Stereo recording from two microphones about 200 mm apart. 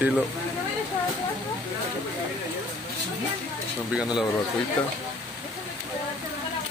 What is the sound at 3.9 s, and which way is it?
Speech, 5° right (ahead or behind).